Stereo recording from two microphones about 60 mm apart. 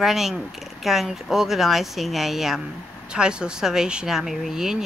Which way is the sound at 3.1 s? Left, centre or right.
Centre.